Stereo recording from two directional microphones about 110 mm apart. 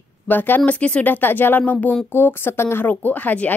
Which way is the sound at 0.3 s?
20° left (ahead or behind).